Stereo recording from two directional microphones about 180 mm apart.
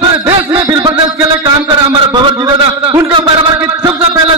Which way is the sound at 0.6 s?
20° right (ahead or behind).